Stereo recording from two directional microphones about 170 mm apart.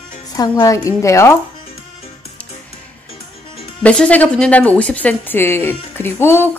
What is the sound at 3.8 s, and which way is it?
A woman's voice, 5° left (ahead or behind).